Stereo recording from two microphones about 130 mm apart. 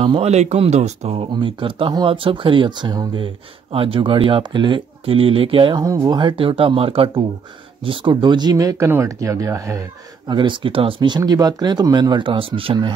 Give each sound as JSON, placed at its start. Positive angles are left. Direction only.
{"t": 0.0, "sound": "speech", "side_deg": -45}
{"t": 0.3, "sound": "speech", "side_deg": -60}
{"t": 1.3, "sound": "speech", "side_deg": -40}
{"t": 5.9, "sound": "speech", "side_deg": -25}
{"t": 10.2, "sound": "speech", "side_deg": -35}